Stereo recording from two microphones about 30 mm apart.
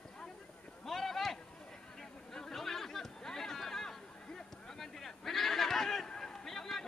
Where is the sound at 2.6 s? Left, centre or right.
Centre.